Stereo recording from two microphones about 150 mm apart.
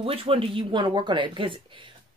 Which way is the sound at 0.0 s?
40° right (ahead or behind).